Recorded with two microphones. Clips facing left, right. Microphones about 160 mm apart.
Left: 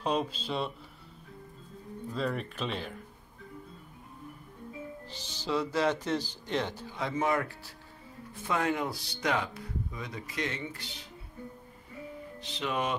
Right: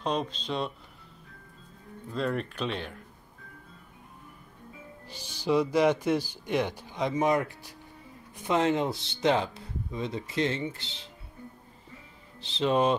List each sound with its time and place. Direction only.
0.0 s speech: 5° left (ahead or behind)
2.1 s speech: centre (ahead or behind)
5.1 s speech: 10° right (ahead or behind)
12.4 s speech: 30° right (ahead or behind)